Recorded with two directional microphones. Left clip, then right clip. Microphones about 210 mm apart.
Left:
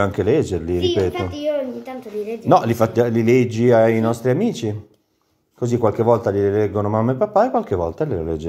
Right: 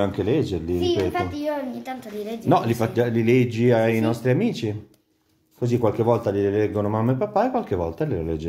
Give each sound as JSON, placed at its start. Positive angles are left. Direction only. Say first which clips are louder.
{"t": 0.0, "sound": "speech", "louder": "left 5 dB", "side_deg": 30}
{"t": 1.1, "sound": "a child's voice", "louder": "left 2 dB", "side_deg": -35}
{"t": 2.4, "sound": "speech", "louder": "left 5 dB", "side_deg": 30}